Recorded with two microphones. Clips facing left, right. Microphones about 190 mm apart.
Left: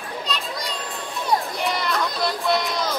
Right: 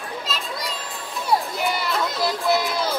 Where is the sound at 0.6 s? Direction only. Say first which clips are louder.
Left 1 dB; centre (ahead or behind).